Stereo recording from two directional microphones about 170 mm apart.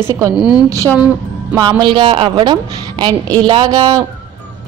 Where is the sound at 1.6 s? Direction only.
25° right (ahead or behind).